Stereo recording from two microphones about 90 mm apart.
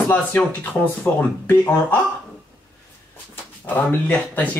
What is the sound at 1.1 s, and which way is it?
Speech, 20° left (ahead or behind).